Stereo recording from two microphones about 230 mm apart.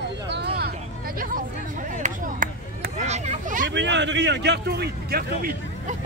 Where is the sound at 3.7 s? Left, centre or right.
Right.